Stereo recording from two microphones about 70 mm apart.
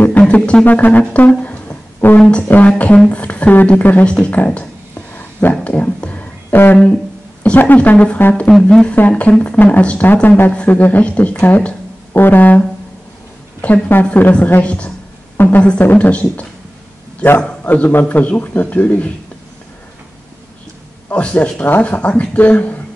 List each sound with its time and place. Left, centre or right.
0.3 s speech: centre
4.0 s a sound: centre
7.4 s speech: left
8.5 s speech: centre
8.8 s speech: left
15.3 s a sound: left
15.6 s speech: centre
17.6 s speech: left
21.1 s speech: centre